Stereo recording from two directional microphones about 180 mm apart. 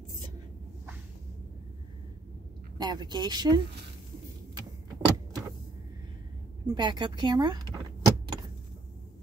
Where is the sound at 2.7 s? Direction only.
25° right (ahead or behind).